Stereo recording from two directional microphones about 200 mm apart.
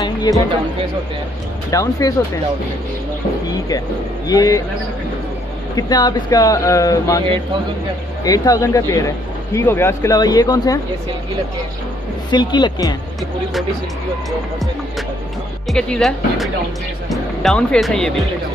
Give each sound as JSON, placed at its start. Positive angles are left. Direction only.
{"t": 0.0, "sound": "music", "side_deg": 20}
{"t": 1.7, "sound": "speech", "side_deg": 15}
{"t": 4.3, "sound": "speech", "side_deg": 20}
{"t": 5.8, "sound": "speech", "side_deg": 20}
{"t": 12.3, "sound": "speech", "side_deg": 20}
{"t": 15.6, "sound": "speech", "side_deg": 0}